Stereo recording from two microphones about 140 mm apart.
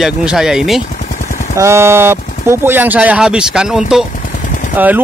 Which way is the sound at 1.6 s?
20° right (ahead or behind).